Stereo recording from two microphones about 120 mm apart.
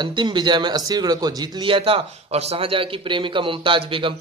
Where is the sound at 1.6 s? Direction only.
50° right (ahead or behind).